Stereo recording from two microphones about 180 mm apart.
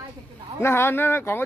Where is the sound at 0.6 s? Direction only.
15° left (ahead or behind).